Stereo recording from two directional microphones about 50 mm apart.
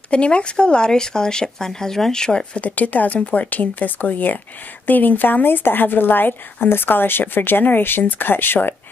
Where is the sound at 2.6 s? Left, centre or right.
Left.